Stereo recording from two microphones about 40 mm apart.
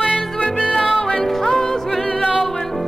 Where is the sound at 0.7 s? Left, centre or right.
Left.